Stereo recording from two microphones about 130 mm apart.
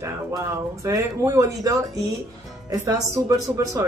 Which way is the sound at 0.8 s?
25° right (ahead or behind).